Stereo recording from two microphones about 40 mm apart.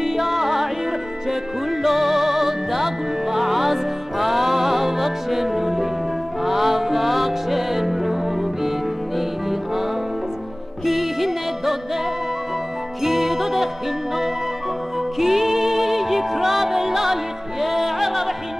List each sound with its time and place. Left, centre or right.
0.0 s music: centre
1.7 s music: centre
10.9 s music: centre
13.0 s music: centre
15.1 s music: centre